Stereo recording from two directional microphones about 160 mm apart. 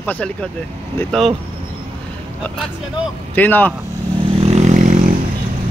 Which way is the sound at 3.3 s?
10° left (ahead or behind).